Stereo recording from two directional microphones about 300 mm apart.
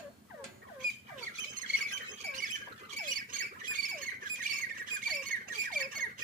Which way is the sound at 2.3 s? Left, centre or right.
Right.